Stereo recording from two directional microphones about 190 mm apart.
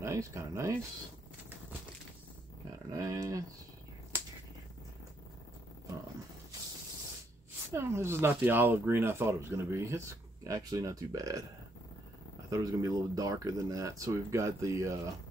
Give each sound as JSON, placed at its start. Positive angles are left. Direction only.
{"t": 0.0, "sound": "speech", "side_deg": -15}
{"t": 2.9, "sound": "speech", "side_deg": -15}
{"t": 7.7, "sound": "speech", "side_deg": -15}
{"t": 12.4, "sound": "speech", "side_deg": -15}